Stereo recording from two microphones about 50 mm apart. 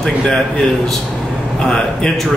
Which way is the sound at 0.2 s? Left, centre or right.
Centre.